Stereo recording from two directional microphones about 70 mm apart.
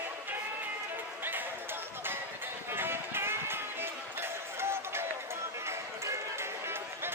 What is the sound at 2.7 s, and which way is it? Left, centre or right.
Music, right.